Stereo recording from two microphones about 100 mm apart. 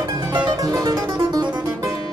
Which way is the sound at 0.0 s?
35° right (ahead or behind).